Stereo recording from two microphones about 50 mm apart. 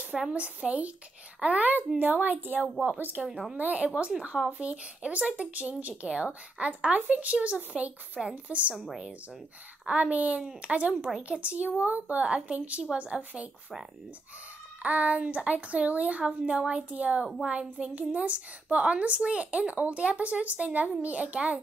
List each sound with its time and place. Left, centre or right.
0.3 s a woman's voice: right
3.3 s a woman's voice: centre
3.5 s a woman's voice: right
8.7 s a woman's voice: centre
9.8 s a woman's voice: right
14.8 s a woman's voice: right